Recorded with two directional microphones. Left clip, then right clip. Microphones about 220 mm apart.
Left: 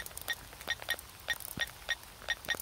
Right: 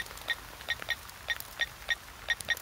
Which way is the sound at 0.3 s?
15° left (ahead or behind).